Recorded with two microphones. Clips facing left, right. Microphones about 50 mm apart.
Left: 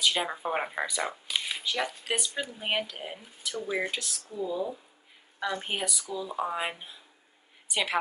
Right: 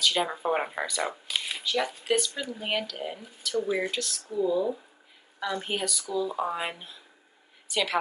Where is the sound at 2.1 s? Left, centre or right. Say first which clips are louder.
Right 4 dB; centre.